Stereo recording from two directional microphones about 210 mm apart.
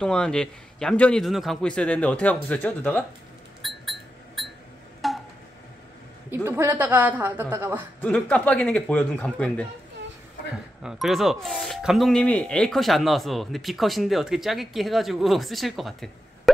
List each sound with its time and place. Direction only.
0.0 s speech: 5° left (ahead or behind)
3.6 s a sound: centre (ahead or behind)
6.3 s a woman's voice: 10° right (ahead or behind)
8.0 s a man's voice: 5° left (ahead or behind)
10.8 s speech: centre (ahead or behind)